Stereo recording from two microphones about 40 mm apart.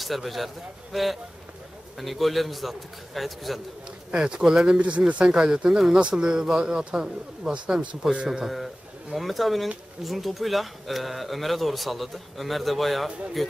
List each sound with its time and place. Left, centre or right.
0.0 s a man's voice: centre
2.0 s speech: centre
4.1 s speech: right
4.5 s speech: centre
4.7 s speech: right
5.2 s speech: centre
8.3 s speech: centre